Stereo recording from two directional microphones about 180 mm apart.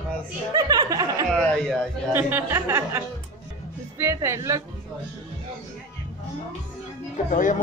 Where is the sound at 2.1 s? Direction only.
15° right (ahead or behind).